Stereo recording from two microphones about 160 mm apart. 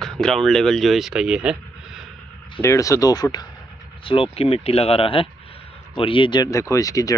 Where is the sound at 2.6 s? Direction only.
20° left (ahead or behind).